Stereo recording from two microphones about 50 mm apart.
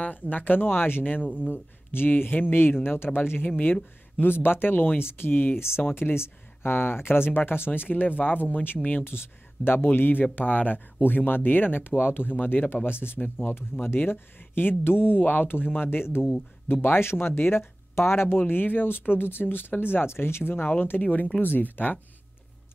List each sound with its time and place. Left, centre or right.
0.0 s speech: left
9.0 s speech: left
18.5 s speech: left